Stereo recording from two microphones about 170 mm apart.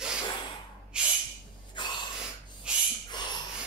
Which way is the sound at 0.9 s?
5° right (ahead or behind).